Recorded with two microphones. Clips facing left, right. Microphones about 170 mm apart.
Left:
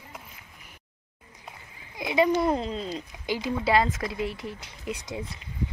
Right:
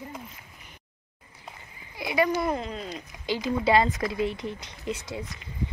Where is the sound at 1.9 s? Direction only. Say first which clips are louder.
Left 2 dB; 20° left (ahead or behind).